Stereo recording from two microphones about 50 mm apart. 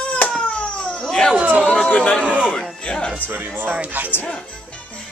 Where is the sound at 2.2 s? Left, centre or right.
Centre.